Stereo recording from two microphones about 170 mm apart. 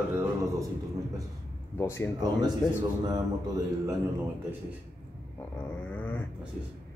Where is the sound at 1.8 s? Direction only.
15° left (ahead or behind).